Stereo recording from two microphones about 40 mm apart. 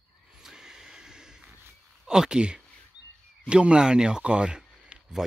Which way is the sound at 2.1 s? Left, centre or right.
Centre.